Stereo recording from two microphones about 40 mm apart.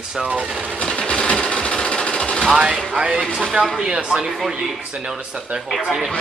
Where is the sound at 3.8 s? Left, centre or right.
Right.